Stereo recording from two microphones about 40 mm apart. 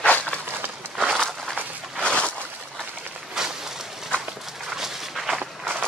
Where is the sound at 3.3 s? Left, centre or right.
Centre.